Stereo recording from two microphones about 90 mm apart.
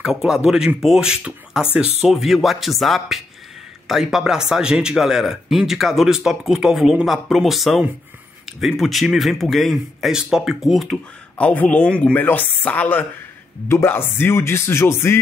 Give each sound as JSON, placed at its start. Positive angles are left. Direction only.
{"t": 0.0, "sound": "speech", "side_deg": -5}
{"t": 11.3, "sound": "speech", "side_deg": 15}